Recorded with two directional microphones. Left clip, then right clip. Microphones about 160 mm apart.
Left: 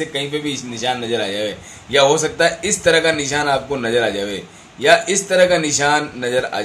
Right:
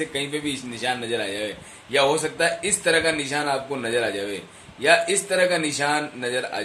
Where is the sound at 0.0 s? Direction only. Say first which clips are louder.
Left 5 dB; 5° left (ahead or behind).